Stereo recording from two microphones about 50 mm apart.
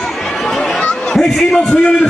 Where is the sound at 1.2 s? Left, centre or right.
Left.